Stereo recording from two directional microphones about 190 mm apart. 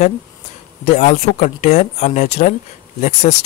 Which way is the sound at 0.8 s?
35° left (ahead or behind).